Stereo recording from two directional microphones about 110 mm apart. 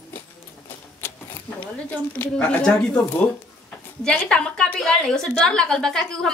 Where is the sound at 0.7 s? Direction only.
20° left (ahead or behind).